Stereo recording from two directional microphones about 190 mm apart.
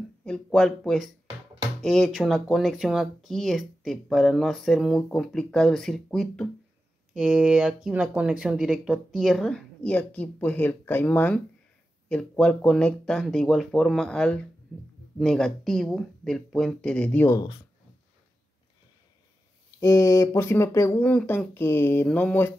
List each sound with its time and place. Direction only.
0.2 s speech: 5° left (ahead or behind)
19.8 s speech: 15° left (ahead or behind)